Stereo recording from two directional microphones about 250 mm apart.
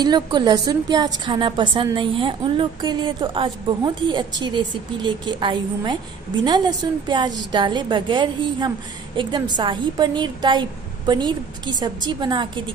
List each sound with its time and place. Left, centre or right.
0.0 s a woman's voice: centre